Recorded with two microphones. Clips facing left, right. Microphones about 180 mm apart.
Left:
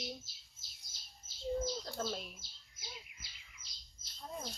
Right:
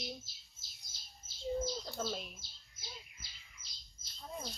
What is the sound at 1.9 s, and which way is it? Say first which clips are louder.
Speech: even; centre (ahead or behind).